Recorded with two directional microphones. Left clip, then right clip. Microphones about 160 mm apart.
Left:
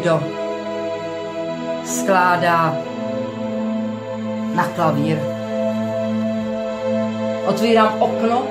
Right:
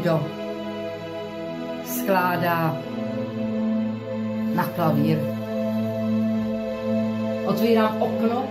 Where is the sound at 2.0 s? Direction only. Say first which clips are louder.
Left 6 dB; 15° left (ahead or behind).